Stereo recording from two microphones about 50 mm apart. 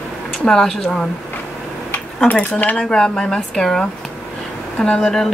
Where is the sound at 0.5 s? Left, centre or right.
Centre.